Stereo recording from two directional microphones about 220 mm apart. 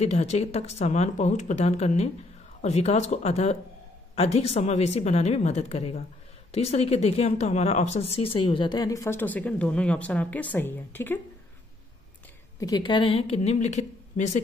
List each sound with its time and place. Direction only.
0.0 s speech: 30° left (ahead or behind); by 11.1 s 10° left (ahead or behind)
12.5 s speech: 15° left (ahead or behind)